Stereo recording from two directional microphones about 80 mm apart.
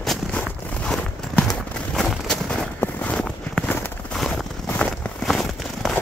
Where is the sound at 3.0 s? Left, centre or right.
Centre.